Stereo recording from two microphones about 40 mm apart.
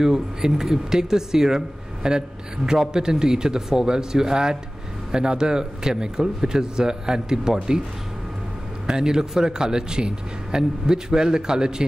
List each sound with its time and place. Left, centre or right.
0.0 s a man's voice: centre
8.8 s a man's voice: centre